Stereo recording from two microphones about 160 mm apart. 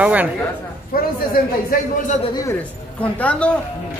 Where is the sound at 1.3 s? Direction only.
60° left (ahead or behind).